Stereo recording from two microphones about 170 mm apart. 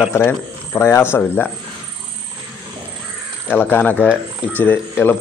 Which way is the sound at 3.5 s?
10° left (ahead or behind).